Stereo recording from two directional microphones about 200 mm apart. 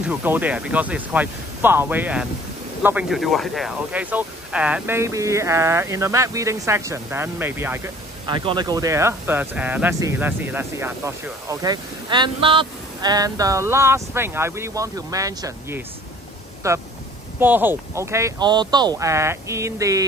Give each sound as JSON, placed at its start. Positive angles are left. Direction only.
{"t": 0.0, "sound": "speech", "side_deg": -10}
{"t": 8.3, "sound": "speech", "side_deg": -20}